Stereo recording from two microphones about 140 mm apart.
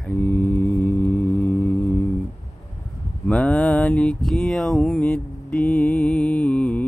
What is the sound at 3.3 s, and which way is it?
Mantra, 10° left (ahead or behind).